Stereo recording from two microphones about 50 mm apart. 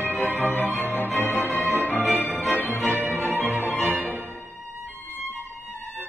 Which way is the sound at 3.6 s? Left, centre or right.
Left.